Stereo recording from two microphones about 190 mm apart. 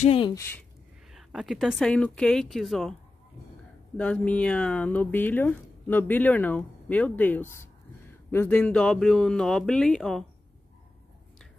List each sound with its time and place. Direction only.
0.0 s speech: 30° left (ahead or behind)
1.1 s a woman's voice: centre (ahead or behind)